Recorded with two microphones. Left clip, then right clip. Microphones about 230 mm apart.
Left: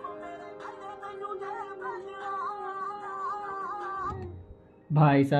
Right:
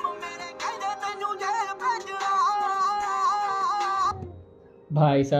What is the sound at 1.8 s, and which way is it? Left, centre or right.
Music, right.